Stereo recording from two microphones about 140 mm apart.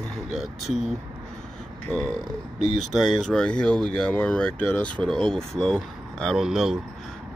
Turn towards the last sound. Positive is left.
turn(degrees=0)  # may be behind; listen again after turning